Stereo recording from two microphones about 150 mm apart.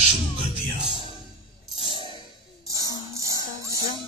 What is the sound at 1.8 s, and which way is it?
Music, 35° right (ahead or behind).